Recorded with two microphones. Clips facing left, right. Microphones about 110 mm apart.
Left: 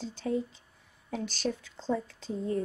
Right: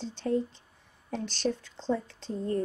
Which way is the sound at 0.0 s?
5° left (ahead or behind).